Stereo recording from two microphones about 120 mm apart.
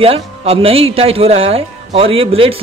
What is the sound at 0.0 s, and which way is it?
A man's voice, 55° right (ahead or behind).